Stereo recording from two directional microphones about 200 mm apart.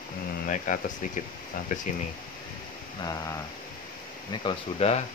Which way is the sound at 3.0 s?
20° left (ahead or behind).